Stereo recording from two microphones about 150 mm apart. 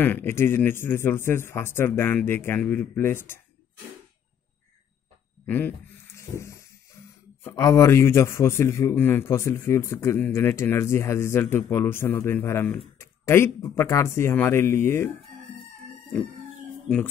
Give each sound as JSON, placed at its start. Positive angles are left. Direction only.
{"t": 0.0, "sound": "a man's voice", "side_deg": 15}
{"t": 5.5, "sound": "a man's voice", "side_deg": 10}